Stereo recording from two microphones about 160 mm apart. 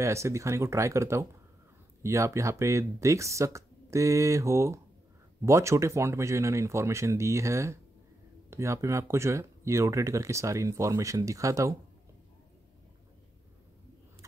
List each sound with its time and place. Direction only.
0.0 s speech: 20° right (ahead or behind)